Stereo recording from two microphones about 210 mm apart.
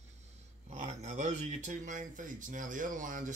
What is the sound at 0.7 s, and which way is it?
Speech, 35° right (ahead or behind).